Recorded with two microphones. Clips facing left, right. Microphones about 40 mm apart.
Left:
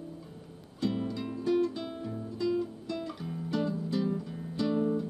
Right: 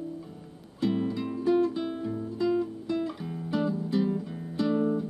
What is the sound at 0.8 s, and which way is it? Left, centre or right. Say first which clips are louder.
Music: right 4 dB; centre.